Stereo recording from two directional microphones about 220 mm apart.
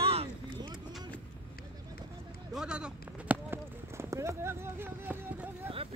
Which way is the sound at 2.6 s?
5° right (ahead or behind).